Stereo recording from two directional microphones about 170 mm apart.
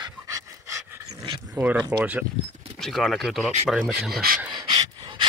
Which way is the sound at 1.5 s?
5° right (ahead or behind).